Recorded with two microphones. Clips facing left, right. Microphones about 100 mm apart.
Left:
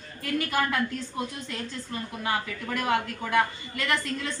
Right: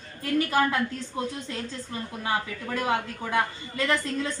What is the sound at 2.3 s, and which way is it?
A woman's voice, 25° right (ahead or behind).